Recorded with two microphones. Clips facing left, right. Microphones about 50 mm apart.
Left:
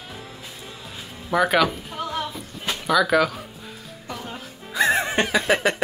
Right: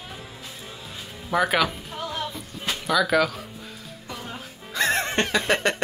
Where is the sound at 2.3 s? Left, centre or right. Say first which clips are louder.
Left 1 dB; centre.